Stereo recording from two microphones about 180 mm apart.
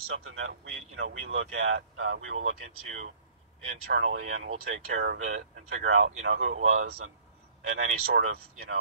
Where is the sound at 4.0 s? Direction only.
90° right.